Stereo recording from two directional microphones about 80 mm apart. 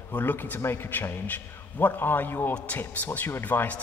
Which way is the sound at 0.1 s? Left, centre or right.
Left.